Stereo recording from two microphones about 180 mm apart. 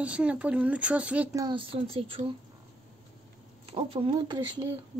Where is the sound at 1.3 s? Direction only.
25° right (ahead or behind).